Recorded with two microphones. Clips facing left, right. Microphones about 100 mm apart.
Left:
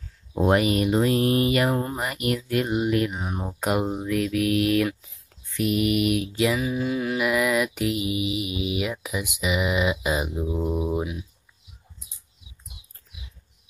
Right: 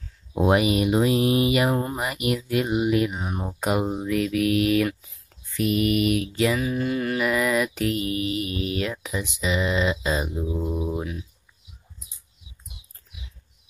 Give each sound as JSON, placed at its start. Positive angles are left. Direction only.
{"t": 0.3, "sound": "speech", "side_deg": -10}